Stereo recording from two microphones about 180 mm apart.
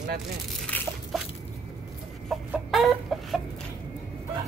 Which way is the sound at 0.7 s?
5° left (ahead or behind).